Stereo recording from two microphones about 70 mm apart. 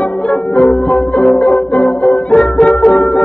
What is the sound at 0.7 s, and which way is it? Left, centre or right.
Music, centre.